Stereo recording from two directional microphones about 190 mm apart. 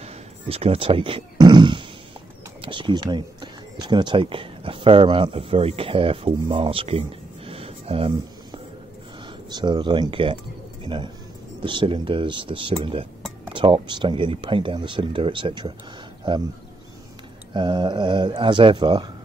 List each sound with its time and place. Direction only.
0.0 s speech: 30° right (ahead or behind)
10.8 s music: 25° right (ahead or behind)
11.6 s speech: 25° right (ahead or behind)
17.6 s speech: 25° right (ahead or behind)